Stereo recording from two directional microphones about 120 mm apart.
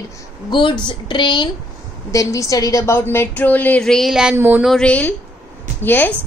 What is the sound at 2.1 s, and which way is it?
A woman's voice, 25° left (ahead or behind).